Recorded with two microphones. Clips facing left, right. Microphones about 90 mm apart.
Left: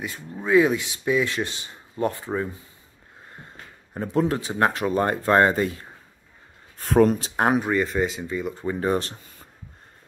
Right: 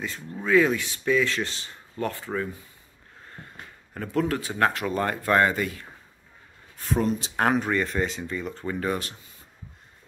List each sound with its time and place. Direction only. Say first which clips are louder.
0.0 s speech: left 1 dB; 15° left (ahead or behind); by 5.9 s 30° left (ahead or behind)
6.8 s speech: left 7 dB; 70° left (ahead or behind)
7.5 s speech: left 3 dB; 5° left (ahead or behind)
8.7 s speech: left 5 dB; 30° left (ahead or behind)